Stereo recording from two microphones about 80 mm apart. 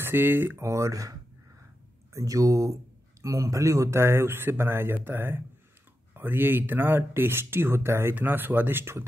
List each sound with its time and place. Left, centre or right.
0.0 s speech: right
0.6 s speech: right
2.1 s speech: right